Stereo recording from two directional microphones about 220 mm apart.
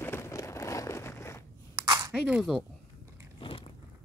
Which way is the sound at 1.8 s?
15° right (ahead or behind).